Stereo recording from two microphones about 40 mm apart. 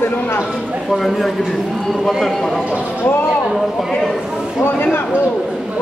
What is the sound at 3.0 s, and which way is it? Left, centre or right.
Speech, left.